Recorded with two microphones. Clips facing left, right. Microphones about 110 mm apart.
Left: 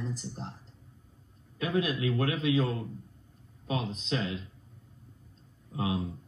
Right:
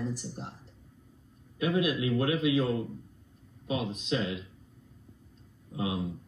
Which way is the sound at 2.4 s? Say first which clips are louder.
Right 1 dB; 30° left (ahead or behind).